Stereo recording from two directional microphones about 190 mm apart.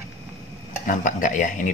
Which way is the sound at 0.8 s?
40° left (ahead or behind).